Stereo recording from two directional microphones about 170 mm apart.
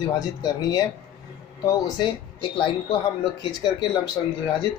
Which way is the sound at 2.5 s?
30° left (ahead or behind).